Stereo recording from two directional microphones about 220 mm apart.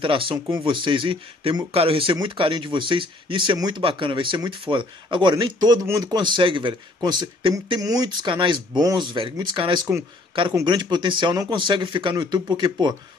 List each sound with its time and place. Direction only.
0.0 s speech: 25° right (ahead or behind)